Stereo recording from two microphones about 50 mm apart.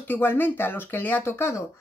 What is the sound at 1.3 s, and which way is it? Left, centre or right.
Speech, left.